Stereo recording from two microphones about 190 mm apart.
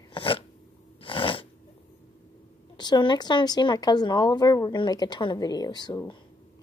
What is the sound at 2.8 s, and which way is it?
A woman's voice, 25° left (ahead or behind).